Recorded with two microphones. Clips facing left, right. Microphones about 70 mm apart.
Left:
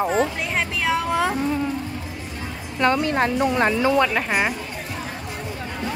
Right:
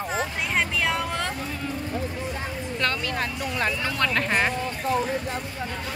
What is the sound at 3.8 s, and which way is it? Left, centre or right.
Speech, centre.